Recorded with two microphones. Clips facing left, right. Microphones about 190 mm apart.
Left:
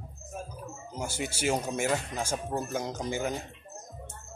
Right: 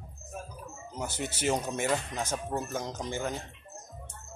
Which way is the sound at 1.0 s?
10° left (ahead or behind).